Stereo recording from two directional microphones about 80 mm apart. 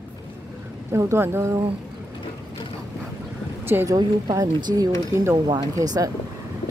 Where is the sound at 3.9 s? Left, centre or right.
Right.